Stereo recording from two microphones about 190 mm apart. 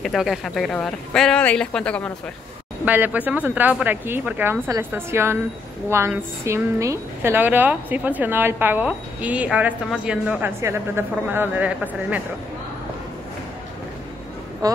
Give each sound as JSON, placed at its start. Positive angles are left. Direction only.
{"t": 0.0, "sound": "speech", "side_deg": 0}
{"t": 2.8, "sound": "a woman's voice", "side_deg": -10}
{"t": 14.6, "sound": "a woman's voice", "side_deg": -20}